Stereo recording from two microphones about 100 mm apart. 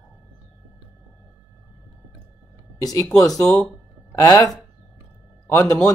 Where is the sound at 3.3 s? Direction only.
Centre (ahead or behind).